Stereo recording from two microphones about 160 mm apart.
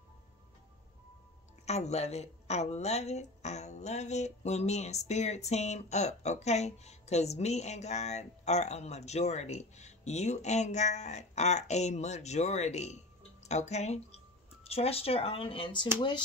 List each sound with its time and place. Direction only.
1.7 s speech: 45° left (ahead or behind)